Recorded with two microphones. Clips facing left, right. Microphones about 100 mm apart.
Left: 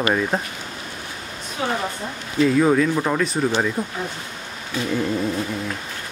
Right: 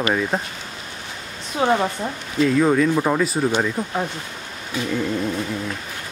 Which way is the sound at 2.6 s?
Centre (ahead or behind).